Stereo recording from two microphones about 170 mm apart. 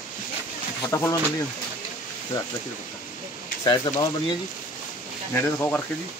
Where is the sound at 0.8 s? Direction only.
15° left (ahead or behind).